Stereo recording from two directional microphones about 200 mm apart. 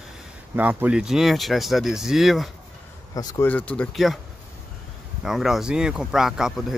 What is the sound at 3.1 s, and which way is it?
Speech, 10° left (ahead or behind).